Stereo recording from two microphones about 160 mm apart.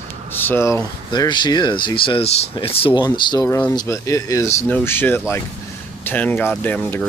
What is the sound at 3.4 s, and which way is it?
Speech, 15° left (ahead or behind).